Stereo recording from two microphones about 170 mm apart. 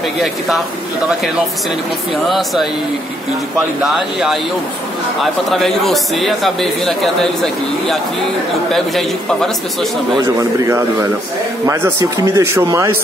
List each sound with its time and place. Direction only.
2.2 s speech: centre (ahead or behind)
3.8 s speech: centre (ahead or behind)
11.6 s a man's voice: 15° right (ahead or behind)